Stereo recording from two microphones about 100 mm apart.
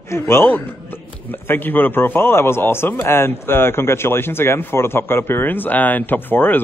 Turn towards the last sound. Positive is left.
turn(degrees=20)  # may be behind; listen again after turning